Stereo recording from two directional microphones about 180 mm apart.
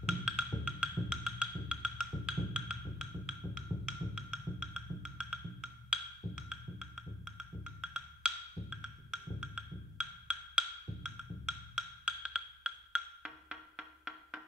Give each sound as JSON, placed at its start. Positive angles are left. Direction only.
{"t": 0.0, "sound": "music", "side_deg": -5}